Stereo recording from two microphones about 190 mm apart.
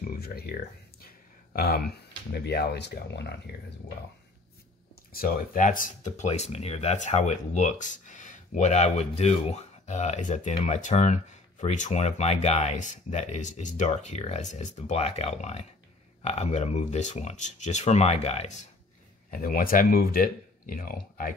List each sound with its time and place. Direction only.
0.0 s speech: 55° left (ahead or behind)
5.1 s speech: 50° left (ahead or behind)
19.3 s speech: 50° left (ahead or behind)